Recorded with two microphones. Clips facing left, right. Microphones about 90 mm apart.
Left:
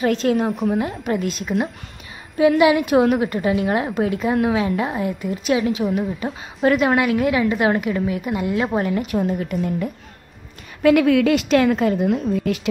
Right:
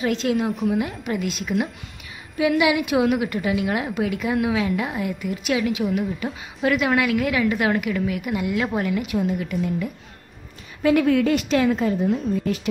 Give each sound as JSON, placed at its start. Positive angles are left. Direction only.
{"t": 0.0, "sound": "a woman's voice", "side_deg": 45}
{"t": 10.8, "sound": "a woman's voice", "side_deg": 80}